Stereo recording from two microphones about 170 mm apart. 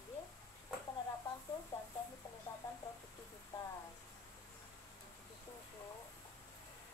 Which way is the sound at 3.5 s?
20° left (ahead or behind).